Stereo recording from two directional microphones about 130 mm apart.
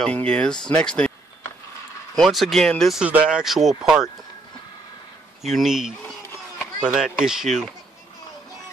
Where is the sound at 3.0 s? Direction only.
10° right (ahead or behind).